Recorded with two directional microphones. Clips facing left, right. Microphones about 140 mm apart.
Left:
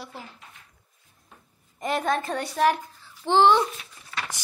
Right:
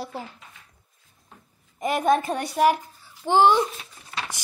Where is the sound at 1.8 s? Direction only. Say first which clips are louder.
Right 4 dB; 10° right (ahead or behind).